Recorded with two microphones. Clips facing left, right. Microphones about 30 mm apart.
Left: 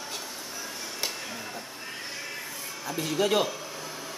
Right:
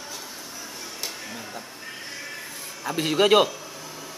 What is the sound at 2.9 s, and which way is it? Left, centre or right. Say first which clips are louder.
Speech: right 7 dB; right.